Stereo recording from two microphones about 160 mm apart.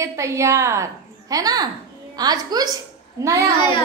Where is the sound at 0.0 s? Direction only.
20° right (ahead or behind).